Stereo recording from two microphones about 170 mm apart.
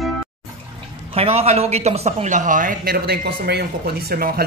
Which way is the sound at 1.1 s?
35° right (ahead or behind).